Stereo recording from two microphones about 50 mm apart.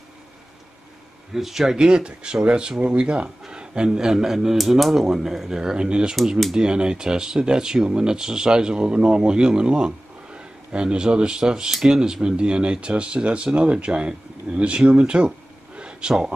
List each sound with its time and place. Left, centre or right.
1.3 s speech: centre